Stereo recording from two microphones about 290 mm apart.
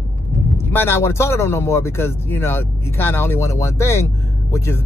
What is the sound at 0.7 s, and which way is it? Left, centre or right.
Speech, centre.